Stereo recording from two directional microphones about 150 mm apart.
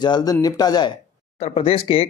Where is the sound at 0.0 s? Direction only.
25° left (ahead or behind).